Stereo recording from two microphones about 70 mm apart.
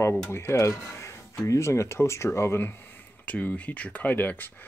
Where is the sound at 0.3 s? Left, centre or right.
Left.